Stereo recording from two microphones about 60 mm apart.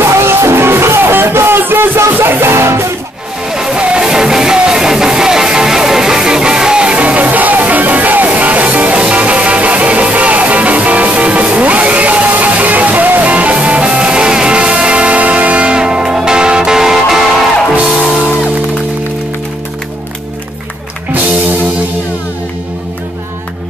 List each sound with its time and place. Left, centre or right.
0.1 s music: right
3.4 s music: centre